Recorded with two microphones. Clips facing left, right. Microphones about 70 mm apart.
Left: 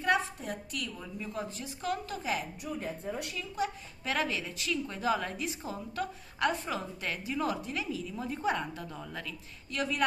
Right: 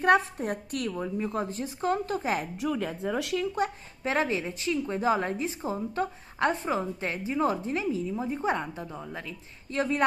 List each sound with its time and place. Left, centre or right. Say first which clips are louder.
0.0 s a woman's voice: right 7 dB; right
2.6 s speech: right 7 dB; right
3.3 s speech: right 5 dB; right
4.0 s a woman's voice: right 5 dB; right